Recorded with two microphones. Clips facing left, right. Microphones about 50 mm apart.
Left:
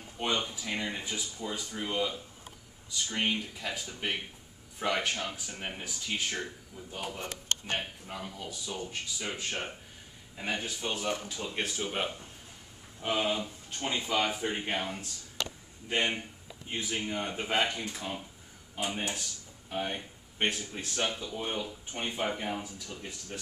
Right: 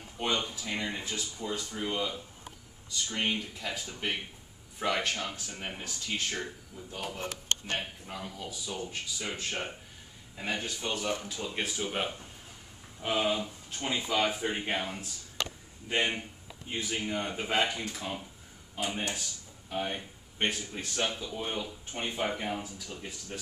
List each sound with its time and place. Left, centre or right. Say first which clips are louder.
0.2 s speech: even; centre
3.2 s speech: left 1 dB; centre
7.6 s speech: even; centre
8.2 s speech: right 1 dB; centre